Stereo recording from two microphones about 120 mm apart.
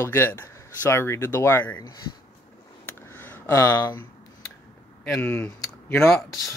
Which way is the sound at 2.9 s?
20° left (ahead or behind).